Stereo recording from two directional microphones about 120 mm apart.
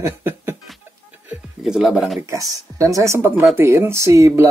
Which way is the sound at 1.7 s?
5° right (ahead or behind).